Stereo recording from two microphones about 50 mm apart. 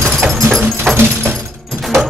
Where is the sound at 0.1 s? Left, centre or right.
Centre.